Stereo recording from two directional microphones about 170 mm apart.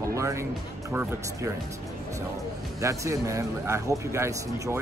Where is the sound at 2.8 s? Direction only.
15° right (ahead or behind).